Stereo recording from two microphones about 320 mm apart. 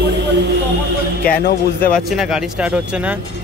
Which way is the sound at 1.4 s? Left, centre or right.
Left.